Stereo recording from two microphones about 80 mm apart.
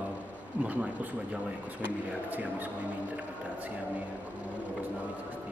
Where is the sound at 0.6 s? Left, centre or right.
Centre.